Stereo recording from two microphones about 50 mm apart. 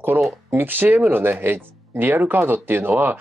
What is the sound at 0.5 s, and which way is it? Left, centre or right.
Speech, right.